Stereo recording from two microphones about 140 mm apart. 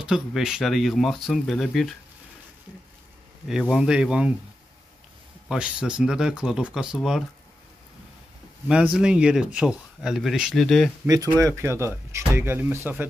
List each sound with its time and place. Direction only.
0.0 s speech: 5° right (ahead or behind)
3.7 s speech: 5° right (ahead or behind)
5.5 s speech: 5° right (ahead or behind)
8.6 s speech: 5° right (ahead or behind)
11.1 s speech: 25° right (ahead or behind)